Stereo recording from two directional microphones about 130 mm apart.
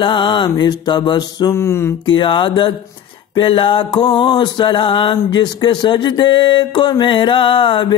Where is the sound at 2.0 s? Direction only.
40° left (ahead or behind).